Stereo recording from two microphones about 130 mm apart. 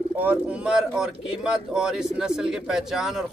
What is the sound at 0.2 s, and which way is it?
Speech, 10° right (ahead or behind).